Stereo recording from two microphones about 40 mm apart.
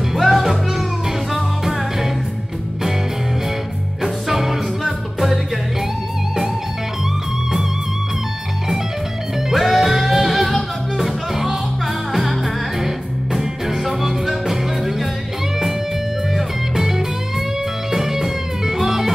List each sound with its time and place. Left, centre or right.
0.2 s music: centre
4.0 s music: centre
9.5 s music: centre
16.3 s music: centre